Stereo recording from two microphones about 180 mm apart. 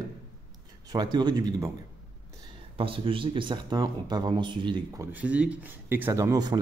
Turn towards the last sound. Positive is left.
turn(degrees=-20)  # may be behind; listen again after turning